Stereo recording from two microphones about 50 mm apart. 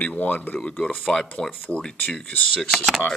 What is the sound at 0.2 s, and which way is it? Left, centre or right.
Speech, left.